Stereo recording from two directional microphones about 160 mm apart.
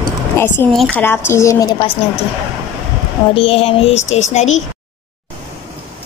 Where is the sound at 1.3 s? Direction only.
20° left (ahead or behind).